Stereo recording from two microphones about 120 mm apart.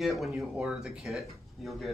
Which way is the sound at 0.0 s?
Centre (ahead or behind).